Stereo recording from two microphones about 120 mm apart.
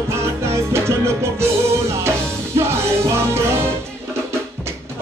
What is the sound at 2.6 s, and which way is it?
Music, 20° right (ahead or behind).